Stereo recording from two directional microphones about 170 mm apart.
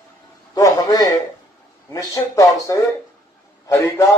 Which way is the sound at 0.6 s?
20° left (ahead or behind).